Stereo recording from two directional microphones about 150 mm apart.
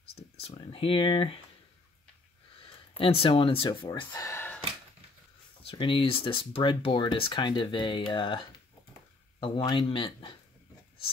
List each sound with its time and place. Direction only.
0.1 s a sound: 40° left (ahead or behind)
3.0 s speech: 35° left (ahead or behind); by 4.6 s 15° left (ahead or behind)
5.6 s speech: 35° left (ahead or behind)